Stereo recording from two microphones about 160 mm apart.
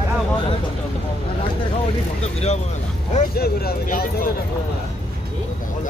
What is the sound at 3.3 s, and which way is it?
Speech, 75° left (ahead or behind).